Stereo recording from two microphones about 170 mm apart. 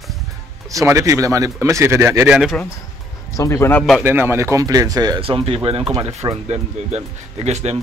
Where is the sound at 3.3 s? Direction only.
15° left (ahead or behind).